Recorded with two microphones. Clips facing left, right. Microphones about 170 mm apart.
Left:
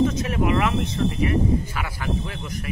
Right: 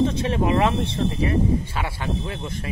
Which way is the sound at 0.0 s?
30° right (ahead or behind).